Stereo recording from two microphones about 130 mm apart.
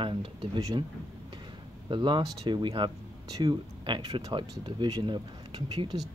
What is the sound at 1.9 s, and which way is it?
Speech, 40° right (ahead or behind).